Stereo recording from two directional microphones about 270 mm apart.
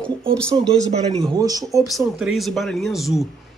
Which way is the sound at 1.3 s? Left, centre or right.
Centre.